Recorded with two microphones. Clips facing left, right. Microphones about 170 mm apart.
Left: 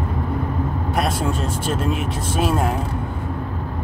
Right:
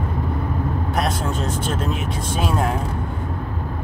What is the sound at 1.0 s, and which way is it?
Speech, 5° left (ahead or behind).